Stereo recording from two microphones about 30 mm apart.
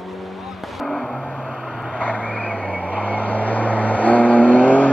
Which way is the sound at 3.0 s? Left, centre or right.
Left.